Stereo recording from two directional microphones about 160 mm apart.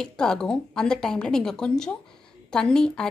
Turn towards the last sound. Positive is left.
turn(degrees=5)  # may be behind; listen again after turning